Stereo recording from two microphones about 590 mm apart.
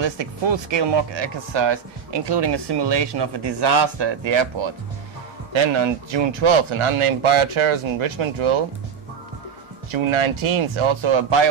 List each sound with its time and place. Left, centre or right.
0.0 s speech: right
9.8 s speech: right